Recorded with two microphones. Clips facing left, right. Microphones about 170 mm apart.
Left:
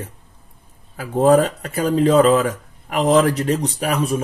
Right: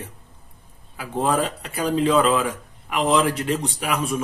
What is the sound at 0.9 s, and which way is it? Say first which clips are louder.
Speech: left 8 dB; 40° left (ahead or behind).